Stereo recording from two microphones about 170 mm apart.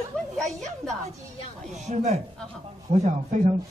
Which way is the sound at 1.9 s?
40° right (ahead or behind).